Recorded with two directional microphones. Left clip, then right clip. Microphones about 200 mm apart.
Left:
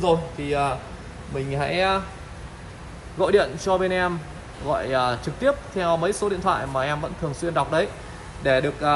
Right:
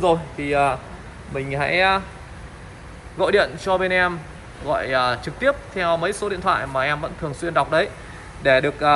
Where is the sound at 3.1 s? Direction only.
15° left (ahead or behind).